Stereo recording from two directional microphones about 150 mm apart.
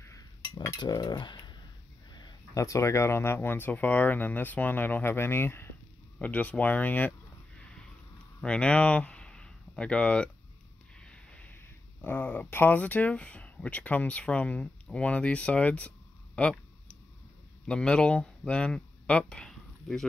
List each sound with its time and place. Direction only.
0.0 s cutlery: 20° left (ahead or behind)
2.1 s speech: 25° left (ahead or behind)
8.4 s speech: 5° left (ahead or behind)
17.6 s speech: 5° left (ahead or behind)